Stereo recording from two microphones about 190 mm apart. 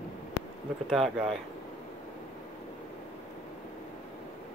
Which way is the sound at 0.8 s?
Centre (ahead or behind).